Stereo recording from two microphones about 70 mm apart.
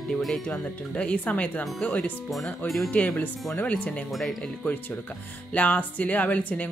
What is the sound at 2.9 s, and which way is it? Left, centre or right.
Speech, left.